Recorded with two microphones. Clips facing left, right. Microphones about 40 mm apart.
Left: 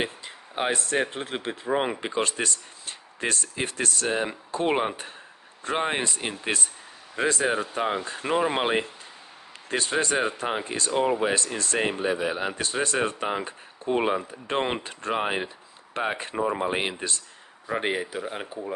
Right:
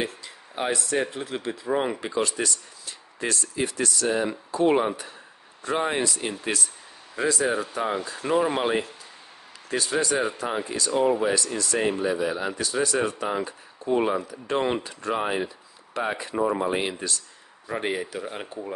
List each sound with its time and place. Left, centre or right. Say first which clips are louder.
0.0 s speech: even; left
4.1 s speech: right 2 dB; left
10.9 s speech: right 1 dB; left
16.3 s speech: right 2 dB; left